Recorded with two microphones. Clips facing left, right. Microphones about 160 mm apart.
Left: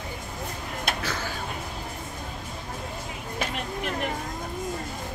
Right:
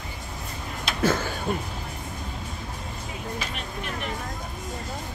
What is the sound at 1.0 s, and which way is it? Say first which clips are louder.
Music: right 8 dB; 50° right (ahead or behind).